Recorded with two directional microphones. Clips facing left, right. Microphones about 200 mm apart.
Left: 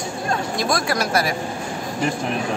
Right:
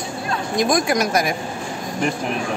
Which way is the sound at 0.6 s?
20° right (ahead or behind).